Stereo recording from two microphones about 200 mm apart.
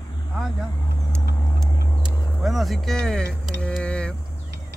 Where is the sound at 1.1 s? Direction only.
Centre (ahead or behind).